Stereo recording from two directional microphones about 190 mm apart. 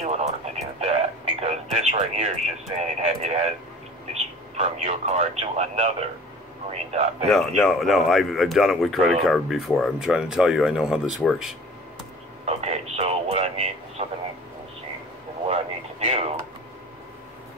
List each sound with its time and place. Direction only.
0.0 s radio: 35° right (ahead or behind)
2.8 s speech: 35° right (ahead or behind)
7.2 s speech: centre (ahead or behind)
12.4 s speech: 35° right (ahead or behind)
16.0 s a sound: 35° right (ahead or behind)